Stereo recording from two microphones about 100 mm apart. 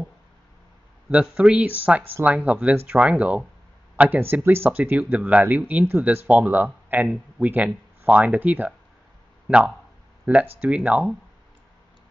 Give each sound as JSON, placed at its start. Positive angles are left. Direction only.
{"t": 1.1, "sound": "speech", "side_deg": -10}
{"t": 10.3, "sound": "speech", "side_deg": -15}